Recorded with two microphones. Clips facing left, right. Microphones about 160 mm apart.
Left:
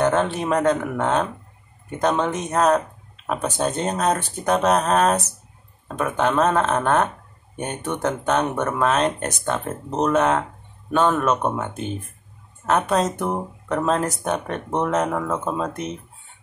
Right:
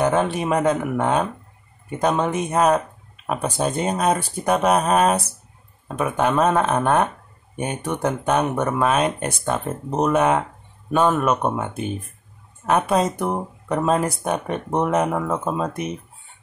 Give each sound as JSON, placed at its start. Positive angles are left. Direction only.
{"t": 0.0, "sound": "speech", "side_deg": -10}